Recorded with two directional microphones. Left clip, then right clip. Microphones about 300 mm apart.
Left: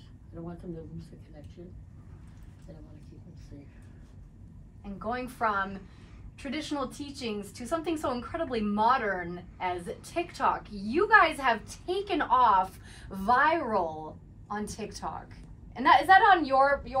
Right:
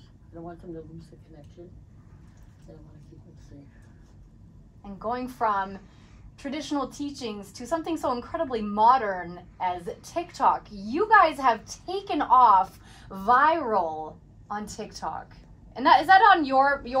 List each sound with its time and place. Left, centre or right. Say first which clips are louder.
4.9 s a woman's voice: right 3 dB; right